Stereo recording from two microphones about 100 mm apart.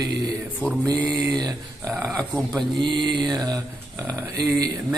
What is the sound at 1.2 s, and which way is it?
Speech, 40° right (ahead or behind).